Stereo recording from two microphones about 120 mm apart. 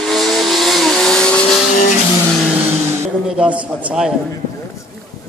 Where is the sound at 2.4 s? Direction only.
15° right (ahead or behind).